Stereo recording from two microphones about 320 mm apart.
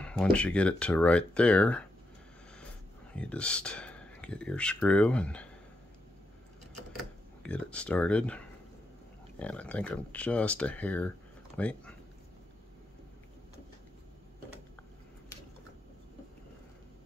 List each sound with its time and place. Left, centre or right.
0.0 s speech: centre
3.2 s speech: centre
7.0 s speech: centre
9.4 s speech: centre